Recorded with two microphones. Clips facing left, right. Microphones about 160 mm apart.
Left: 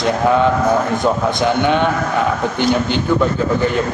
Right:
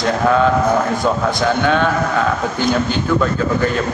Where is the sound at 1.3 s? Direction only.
20° left (ahead or behind).